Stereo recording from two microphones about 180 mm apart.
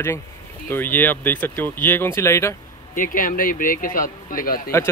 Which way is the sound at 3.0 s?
50° left (ahead or behind).